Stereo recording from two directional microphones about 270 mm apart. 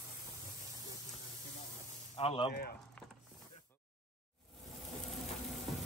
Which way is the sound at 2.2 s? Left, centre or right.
Left.